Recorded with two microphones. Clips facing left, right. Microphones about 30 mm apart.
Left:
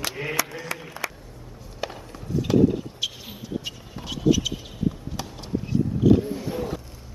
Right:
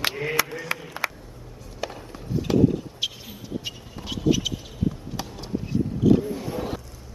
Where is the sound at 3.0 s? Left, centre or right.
Centre.